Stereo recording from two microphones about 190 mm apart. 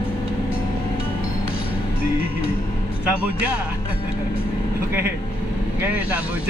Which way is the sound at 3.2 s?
5° right (ahead or behind).